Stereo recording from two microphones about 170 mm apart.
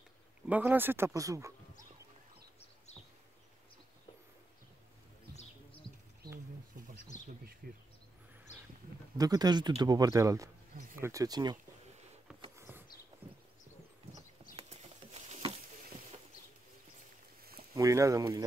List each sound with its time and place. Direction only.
0.5 s speech: 10° right (ahead or behind)
5.3 s music: 35° left (ahead or behind)
7.6 s speech: 60° right (ahead or behind)
9.2 s speech: 25° right (ahead or behind)
12.5 s a sound: 15° right (ahead or behind)
13.2 s horse: 10° right (ahead or behind)
14.6 s a sound: 35° right (ahead or behind)
17.7 s speech: 20° right (ahead or behind)